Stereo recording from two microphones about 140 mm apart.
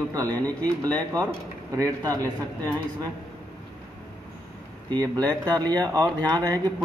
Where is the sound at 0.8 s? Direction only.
25° right (ahead or behind).